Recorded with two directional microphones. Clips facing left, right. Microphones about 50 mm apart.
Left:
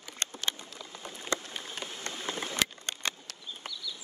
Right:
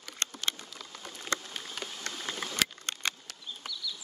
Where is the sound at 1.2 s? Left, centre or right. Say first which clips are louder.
Left 1 dB; left.